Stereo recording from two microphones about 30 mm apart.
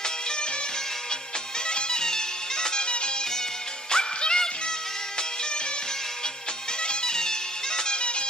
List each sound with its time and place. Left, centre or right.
1.7 s music: left
3.9 s music: left
6.8 s music: left